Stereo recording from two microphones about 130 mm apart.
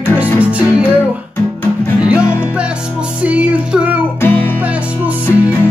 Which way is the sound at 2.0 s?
10° right (ahead or behind).